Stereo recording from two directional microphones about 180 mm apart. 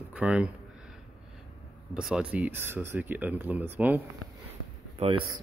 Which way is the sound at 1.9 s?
5° right (ahead or behind).